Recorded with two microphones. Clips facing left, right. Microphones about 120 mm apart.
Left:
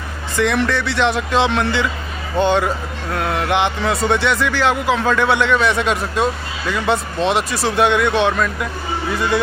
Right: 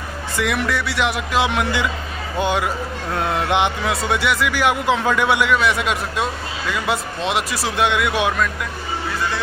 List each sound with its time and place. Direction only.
0.4 s speech: 5° right (ahead or behind)
3.2 s speech: 20° right (ahead or behind)
3.8 s speech: 5° right (ahead or behind)